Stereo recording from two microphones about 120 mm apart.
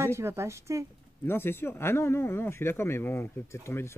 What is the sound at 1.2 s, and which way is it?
Speech, 20° left (ahead or behind).